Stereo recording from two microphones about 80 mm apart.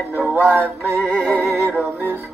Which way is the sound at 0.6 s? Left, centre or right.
Centre.